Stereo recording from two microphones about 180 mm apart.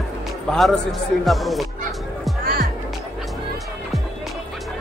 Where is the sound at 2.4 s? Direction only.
55° right (ahead or behind).